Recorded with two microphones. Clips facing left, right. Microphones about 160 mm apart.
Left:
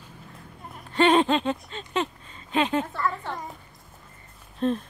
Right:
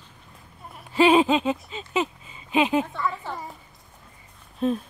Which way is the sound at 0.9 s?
5° right (ahead or behind).